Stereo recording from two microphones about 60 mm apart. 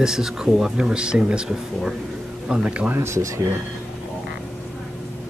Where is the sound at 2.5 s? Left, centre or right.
Centre.